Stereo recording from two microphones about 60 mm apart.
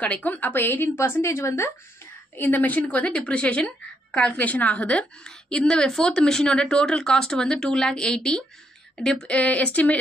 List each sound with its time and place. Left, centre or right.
0.0 s a woman's voice: left
2.3 s speech: left; by 9.3 s centre
9.3 s speech: left